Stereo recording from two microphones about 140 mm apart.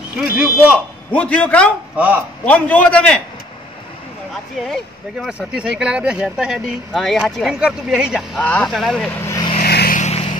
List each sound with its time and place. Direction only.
0.2 s speech: 5° right (ahead or behind)
1.1 s a man's voice: 10° left (ahead or behind)
2.0 s speech: 10° right (ahead or behind)
2.4 s a man's voice: 10° left (ahead or behind)
4.3 s speech: centre (ahead or behind)
8.4 s speech: 10° left (ahead or behind)
9.2 s vehicle: 20° left (ahead or behind)
9.6 s vehicle: 90° left